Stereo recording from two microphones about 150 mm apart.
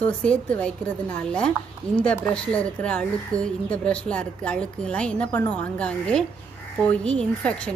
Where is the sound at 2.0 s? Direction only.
5° left (ahead or behind).